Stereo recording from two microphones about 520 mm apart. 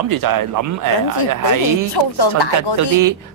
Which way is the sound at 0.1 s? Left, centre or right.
Right.